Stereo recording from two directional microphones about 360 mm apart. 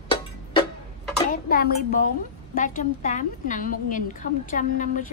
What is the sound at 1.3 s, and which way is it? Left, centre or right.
A woman's voice, left.